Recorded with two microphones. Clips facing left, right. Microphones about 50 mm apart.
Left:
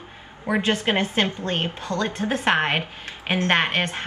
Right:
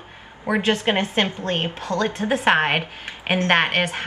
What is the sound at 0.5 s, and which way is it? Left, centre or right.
A woman's voice, centre.